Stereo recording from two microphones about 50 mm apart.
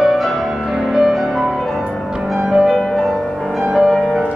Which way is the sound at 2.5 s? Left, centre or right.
Centre.